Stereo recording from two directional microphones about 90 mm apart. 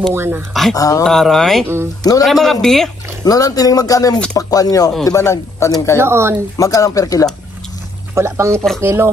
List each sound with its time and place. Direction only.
0.1 s speech: 25° right (ahead or behind)
0.5 s speech: centre (ahead or behind)
0.7 s speech: 40° left (ahead or behind)
1.0 s speech: 5° left (ahead or behind)
3.3 s speech: 40° left (ahead or behind)
5.9 s speech: 30° right (ahead or behind)
6.6 s speech: 40° left (ahead or behind)
8.1 s speech: 30° right (ahead or behind)